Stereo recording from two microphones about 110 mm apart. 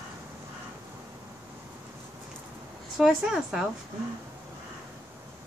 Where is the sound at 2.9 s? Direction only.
5° right (ahead or behind).